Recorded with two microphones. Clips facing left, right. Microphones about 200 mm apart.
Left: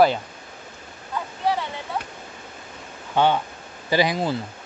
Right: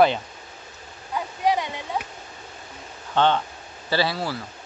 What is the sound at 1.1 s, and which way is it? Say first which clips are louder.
Waterfall: right 2 dB; 15° right (ahead or behind).